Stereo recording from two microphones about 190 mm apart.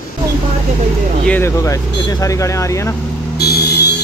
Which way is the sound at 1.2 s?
10° left (ahead or behind).